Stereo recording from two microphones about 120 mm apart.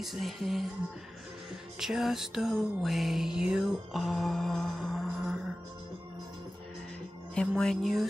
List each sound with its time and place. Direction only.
0.0 s music: centre (ahead or behind)
1.8 s music: centre (ahead or behind)
7.3 s music: 5° left (ahead or behind)